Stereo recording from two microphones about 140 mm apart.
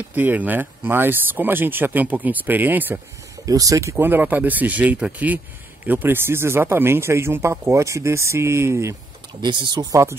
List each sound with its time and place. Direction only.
0.0 s speech: 10° right (ahead or behind)
3.4 s speech: 25° right (ahead or behind)
9.4 s speech: 35° right (ahead or behind)